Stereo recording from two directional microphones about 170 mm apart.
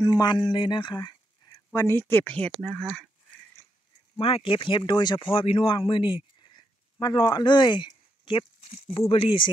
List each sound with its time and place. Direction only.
0.0 s speech: 25° left (ahead or behind)
1.7 s speech: 15° left (ahead or behind)
3.6 s a sound: 15° left (ahead or behind)
4.2 s speech: 30° left (ahead or behind)